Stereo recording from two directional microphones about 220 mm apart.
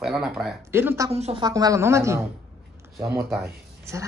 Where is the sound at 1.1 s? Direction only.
25° right (ahead or behind).